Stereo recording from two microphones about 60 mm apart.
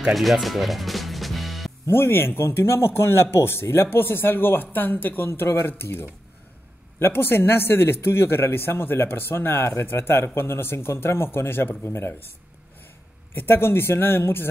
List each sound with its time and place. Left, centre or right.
0.1 s music: centre
1.9 s a man's voice: left
13.3 s a man's voice: left